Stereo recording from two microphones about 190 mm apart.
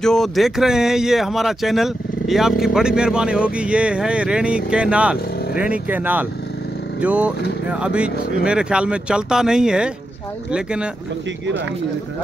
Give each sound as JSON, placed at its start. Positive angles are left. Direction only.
{"t": 0.0, "sound": "speech", "side_deg": 0}